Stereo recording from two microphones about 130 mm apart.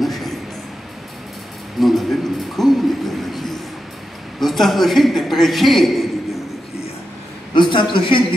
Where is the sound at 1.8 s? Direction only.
Centre (ahead or behind).